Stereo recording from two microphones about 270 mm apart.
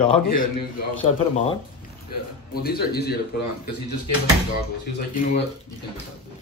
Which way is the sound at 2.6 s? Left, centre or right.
Left.